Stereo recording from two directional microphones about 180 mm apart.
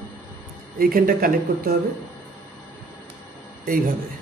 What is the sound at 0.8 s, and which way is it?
Speech, 50° right (ahead or behind).